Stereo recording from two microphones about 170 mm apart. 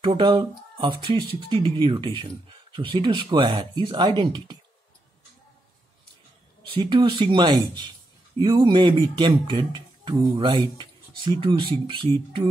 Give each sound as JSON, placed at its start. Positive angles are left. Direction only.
{"t": 0.0, "sound": "speech", "side_deg": -30}
{"t": 6.6, "sound": "speech", "side_deg": -30}